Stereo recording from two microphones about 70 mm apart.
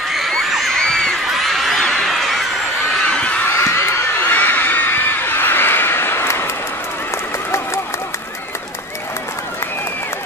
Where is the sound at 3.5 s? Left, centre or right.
Left.